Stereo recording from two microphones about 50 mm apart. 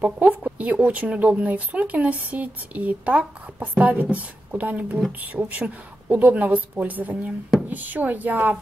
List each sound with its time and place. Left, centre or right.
0.0 s a woman's voice: right